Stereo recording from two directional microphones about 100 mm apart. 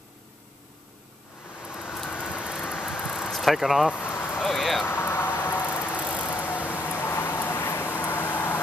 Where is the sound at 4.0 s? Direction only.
20° left (ahead or behind).